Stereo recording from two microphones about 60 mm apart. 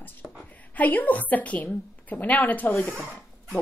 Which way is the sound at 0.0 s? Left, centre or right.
Left.